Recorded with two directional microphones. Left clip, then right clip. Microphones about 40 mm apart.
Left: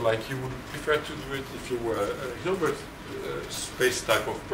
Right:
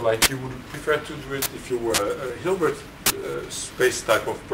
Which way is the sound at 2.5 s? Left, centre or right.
Right.